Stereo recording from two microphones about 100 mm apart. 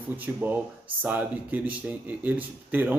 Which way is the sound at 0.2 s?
20° right (ahead or behind).